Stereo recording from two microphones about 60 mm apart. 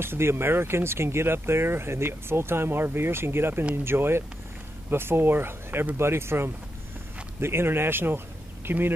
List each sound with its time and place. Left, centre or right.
0.0 s speech: right